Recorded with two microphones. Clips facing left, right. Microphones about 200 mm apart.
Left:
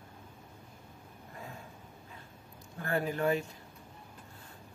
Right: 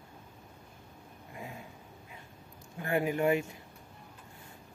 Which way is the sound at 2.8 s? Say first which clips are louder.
Right 2 dB; 15° right (ahead or behind).